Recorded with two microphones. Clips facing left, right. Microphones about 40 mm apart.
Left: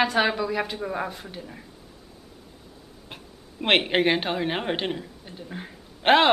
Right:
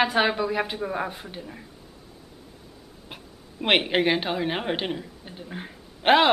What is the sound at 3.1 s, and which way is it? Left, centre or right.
A woman's voice, centre.